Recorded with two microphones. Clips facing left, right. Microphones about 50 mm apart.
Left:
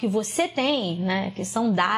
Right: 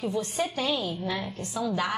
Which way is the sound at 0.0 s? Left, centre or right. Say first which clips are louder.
Left 5 dB; left.